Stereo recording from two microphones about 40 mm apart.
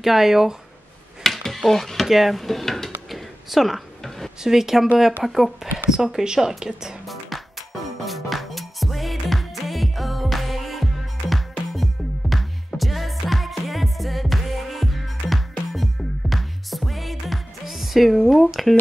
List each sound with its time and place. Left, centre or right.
0.0 s speech: centre
1.2 s a sound: centre
2.0 s speech: centre
3.1 s a sound: centre
4.4 s speech: centre
6.2 s speech: centre
7.1 s music: centre
18.5 s speech: centre